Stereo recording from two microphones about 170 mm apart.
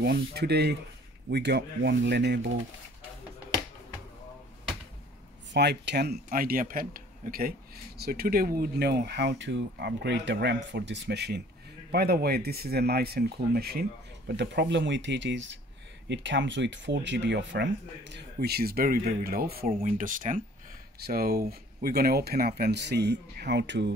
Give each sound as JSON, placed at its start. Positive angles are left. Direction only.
{"t": 0.0, "sound": "speech", "side_deg": -75}
{"t": 5.5, "sound": "speech", "side_deg": -85}
{"t": 21.0, "sound": "speech", "side_deg": -60}